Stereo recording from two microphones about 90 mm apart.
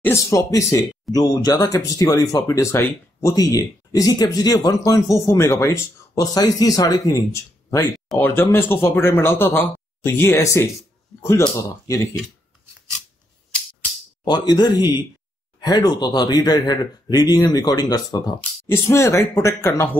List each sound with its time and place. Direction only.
0.1 s speech: 35° left (ahead or behind)
3.3 s speech: 45° left (ahead or behind)
8.2 s speech: 25° left (ahead or behind)
11.9 s speech: 35° left (ahead or behind)
14.2 s speech: 50° left (ahead or behind)
18.7 s speech: 30° left (ahead or behind)